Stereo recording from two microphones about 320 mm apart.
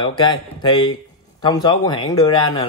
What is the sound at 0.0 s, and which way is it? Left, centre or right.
Speech, centre.